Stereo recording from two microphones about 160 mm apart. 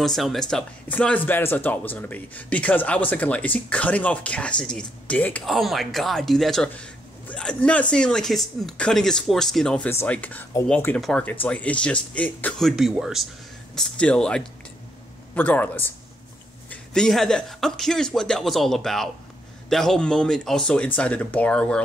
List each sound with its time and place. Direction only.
0.0 s speech: centre (ahead or behind)